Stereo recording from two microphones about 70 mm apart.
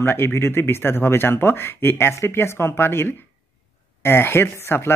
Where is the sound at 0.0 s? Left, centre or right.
Left.